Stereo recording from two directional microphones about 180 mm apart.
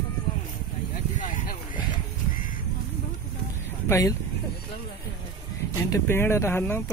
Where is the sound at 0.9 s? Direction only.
50° left (ahead or behind).